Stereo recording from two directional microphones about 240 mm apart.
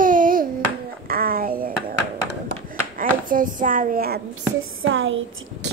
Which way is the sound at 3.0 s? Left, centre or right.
Right.